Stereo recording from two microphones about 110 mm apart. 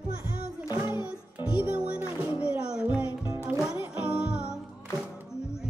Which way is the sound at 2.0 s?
25° right (ahead or behind).